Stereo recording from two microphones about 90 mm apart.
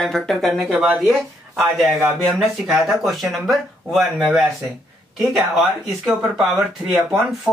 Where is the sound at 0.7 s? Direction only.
15° right (ahead or behind).